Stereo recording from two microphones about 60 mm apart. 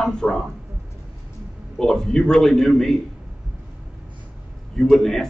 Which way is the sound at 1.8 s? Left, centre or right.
Centre.